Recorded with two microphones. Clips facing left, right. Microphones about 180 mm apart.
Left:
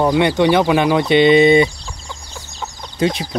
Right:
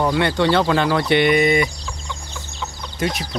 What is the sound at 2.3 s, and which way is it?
Chicken, 40° left (ahead or behind).